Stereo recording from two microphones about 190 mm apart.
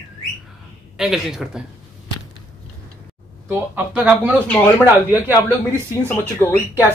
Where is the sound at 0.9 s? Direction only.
Centre (ahead or behind).